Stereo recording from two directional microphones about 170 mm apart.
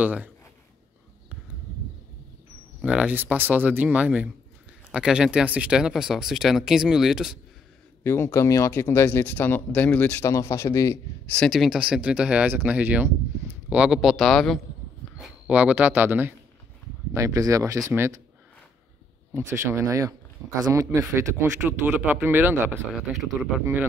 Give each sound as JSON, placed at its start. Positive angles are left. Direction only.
{"t": 0.0, "sound": "speech", "side_deg": -10}
{"t": 2.8, "sound": "speech", "side_deg": -5}
{"t": 8.0, "sound": "speech", "side_deg": 15}
{"t": 19.3, "sound": "speech", "side_deg": -15}